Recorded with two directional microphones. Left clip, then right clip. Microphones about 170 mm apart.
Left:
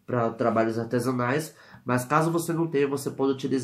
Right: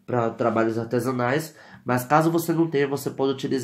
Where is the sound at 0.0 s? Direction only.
25° right (ahead or behind).